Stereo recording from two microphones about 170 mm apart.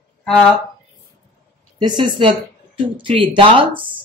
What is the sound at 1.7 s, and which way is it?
Speech, 25° right (ahead or behind).